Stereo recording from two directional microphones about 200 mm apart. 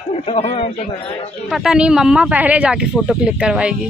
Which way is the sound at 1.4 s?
5° right (ahead or behind).